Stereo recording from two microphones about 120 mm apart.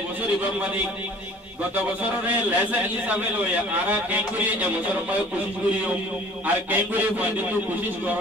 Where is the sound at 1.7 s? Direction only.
15° right (ahead or behind).